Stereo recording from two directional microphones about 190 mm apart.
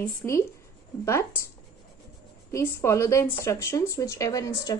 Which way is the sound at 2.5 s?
15° left (ahead or behind).